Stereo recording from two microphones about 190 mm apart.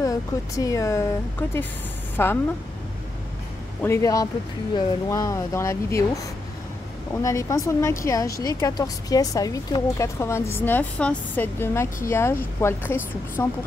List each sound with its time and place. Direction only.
0.0 s speech: 20° left (ahead or behind)
3.8 s speech: 15° left (ahead or behind)
7.2 s speech: 15° left (ahead or behind)